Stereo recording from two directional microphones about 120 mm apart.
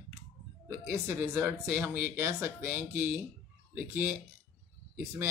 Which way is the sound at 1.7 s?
15° right (ahead or behind).